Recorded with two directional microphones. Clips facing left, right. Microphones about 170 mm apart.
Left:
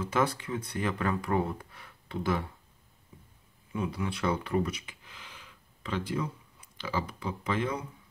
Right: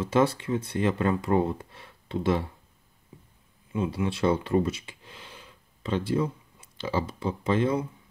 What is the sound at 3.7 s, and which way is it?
Speech, 25° right (ahead or behind).